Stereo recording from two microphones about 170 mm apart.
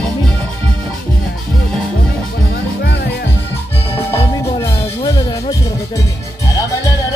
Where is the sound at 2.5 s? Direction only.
70° left (ahead or behind).